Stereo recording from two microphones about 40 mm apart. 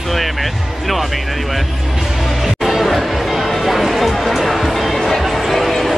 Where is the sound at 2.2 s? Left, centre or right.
Centre.